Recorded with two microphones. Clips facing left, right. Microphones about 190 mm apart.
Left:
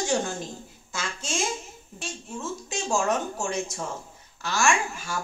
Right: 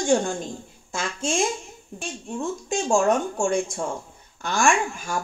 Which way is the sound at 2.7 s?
50° right (ahead or behind).